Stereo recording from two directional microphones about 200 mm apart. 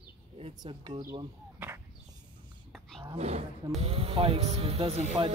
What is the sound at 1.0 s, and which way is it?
Speech, 20° right (ahead or behind).